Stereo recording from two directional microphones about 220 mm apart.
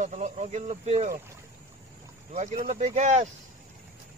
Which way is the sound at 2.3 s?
35° right (ahead or behind).